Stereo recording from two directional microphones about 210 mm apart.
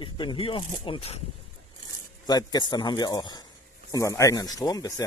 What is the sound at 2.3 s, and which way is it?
Speech, 20° left (ahead or behind).